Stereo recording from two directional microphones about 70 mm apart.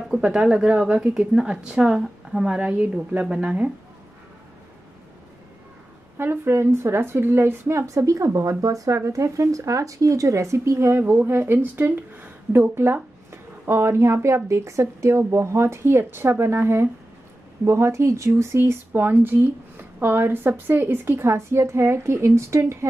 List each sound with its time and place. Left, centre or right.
0.1 s a woman's voice: centre
6.1 s speech: right
7.8 s speech: right
18.6 s speech: right